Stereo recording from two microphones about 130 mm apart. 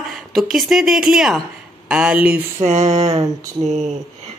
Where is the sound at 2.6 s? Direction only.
60° right (ahead or behind).